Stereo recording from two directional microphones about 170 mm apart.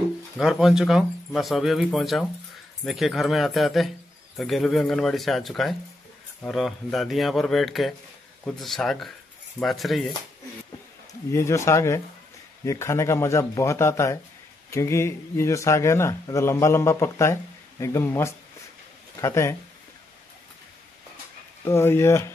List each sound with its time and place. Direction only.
0.4 s speech: centre (ahead or behind)
11.3 s a man's voice: 15° left (ahead or behind)
21.6 s a man's voice: 15° left (ahead or behind)